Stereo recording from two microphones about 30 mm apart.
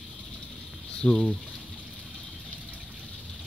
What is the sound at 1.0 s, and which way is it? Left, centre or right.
Speech, left.